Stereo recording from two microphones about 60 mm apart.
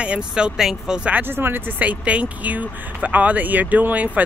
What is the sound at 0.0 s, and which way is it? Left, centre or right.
Speech, centre.